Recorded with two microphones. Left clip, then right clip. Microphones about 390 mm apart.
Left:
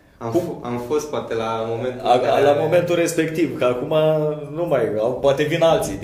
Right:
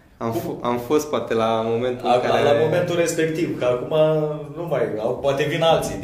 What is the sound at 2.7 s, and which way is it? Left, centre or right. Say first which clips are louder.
Speech: left 2 dB; left.